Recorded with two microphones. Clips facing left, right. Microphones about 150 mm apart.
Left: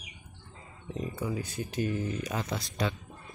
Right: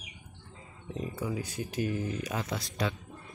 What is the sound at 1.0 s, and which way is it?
Speech, 5° right (ahead or behind).